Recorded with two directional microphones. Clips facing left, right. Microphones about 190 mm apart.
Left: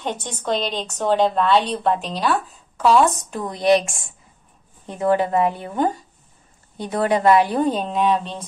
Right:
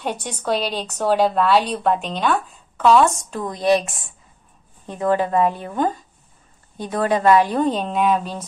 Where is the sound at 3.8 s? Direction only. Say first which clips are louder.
Even; 25° left (ahead or behind).